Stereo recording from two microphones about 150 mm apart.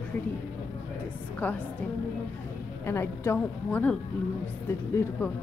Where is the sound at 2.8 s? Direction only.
15° left (ahead or behind).